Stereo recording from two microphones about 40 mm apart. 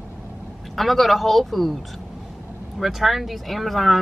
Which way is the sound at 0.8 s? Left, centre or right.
Centre.